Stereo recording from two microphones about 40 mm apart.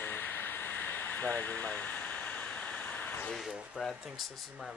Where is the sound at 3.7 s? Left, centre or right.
Centre.